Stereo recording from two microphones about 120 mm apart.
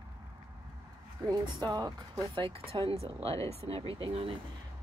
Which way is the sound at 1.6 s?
35° right (ahead or behind).